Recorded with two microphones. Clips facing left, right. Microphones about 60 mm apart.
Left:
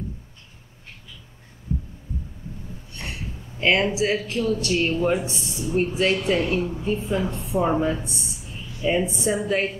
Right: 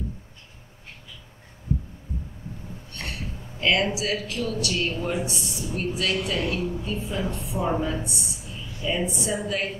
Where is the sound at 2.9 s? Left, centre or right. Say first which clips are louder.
Even; centre.